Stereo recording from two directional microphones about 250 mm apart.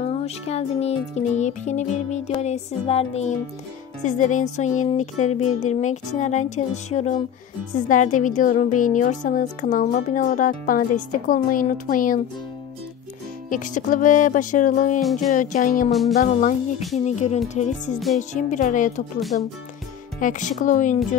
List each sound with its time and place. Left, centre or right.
0.0 s a woman's voice: left
13.5 s a woman's voice: left
15.9 s speech: centre
16.2 s a woman's voice: left